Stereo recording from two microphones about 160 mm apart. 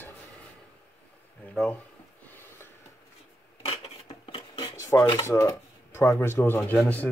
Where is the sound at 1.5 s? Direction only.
5° left (ahead or behind).